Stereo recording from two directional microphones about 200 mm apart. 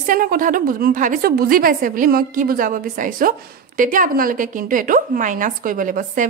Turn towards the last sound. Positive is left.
turn(degrees=-40)  # may be behind; listen again after turning